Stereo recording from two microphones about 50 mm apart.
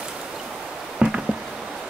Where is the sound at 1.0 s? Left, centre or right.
Centre.